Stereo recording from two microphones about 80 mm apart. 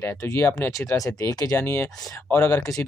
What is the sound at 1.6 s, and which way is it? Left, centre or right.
Speech, left.